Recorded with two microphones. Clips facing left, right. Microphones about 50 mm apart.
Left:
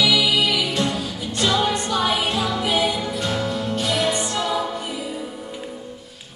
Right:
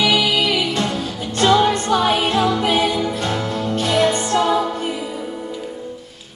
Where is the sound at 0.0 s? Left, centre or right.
Right.